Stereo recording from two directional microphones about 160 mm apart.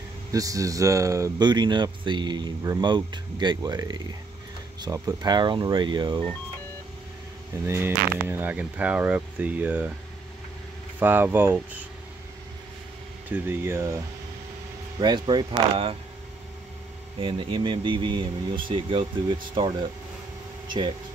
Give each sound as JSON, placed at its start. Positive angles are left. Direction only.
{"t": 0.3, "sound": "speech", "side_deg": -20}
{"t": 7.5, "sound": "speech", "side_deg": -15}
{"t": 11.0, "sound": "speech", "side_deg": -10}
{"t": 13.3, "sound": "speech", "side_deg": -15}
{"t": 15.0, "sound": "speech", "side_deg": -30}
{"t": 17.2, "sound": "speech", "side_deg": -35}